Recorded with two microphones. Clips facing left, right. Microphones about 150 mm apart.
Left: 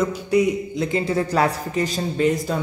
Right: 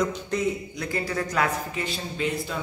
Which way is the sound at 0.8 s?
25° left (ahead or behind).